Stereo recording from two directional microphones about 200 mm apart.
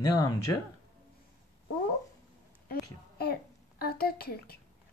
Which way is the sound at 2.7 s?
50° left (ahead or behind).